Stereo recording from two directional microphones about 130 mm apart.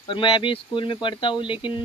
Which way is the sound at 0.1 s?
40° left (ahead or behind).